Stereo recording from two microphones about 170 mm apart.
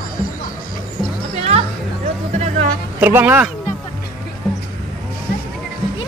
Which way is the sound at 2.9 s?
10° right (ahead or behind).